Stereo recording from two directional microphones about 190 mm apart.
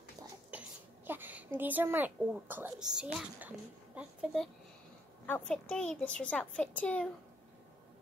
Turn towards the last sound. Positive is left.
turn(degrees=5)  # may be behind; listen again after turning